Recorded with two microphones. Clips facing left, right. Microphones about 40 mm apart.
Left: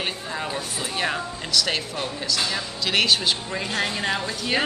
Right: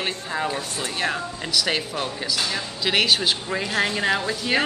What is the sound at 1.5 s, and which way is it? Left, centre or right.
Speech, centre.